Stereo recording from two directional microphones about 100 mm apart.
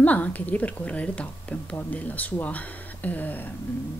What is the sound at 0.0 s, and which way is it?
A woman's voice, 15° left (ahead or behind).